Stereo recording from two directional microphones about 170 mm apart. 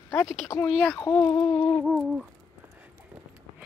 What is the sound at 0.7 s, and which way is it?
Speech, centre (ahead or behind).